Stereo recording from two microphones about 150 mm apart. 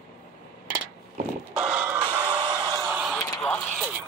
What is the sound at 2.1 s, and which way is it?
Music, 10° right (ahead or behind).